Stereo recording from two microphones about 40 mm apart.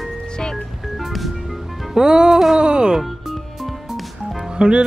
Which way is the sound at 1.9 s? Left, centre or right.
Centre.